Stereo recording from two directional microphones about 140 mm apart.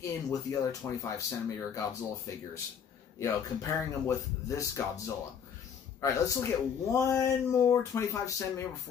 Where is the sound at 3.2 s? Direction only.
20° left (ahead or behind).